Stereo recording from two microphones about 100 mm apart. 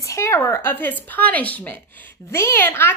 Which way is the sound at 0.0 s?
30° left (ahead or behind).